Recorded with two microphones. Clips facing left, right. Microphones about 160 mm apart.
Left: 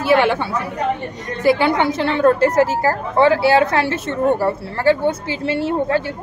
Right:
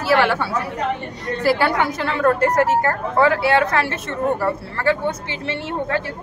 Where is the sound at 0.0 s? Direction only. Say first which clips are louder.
Left 2 dB; 20° left (ahead or behind).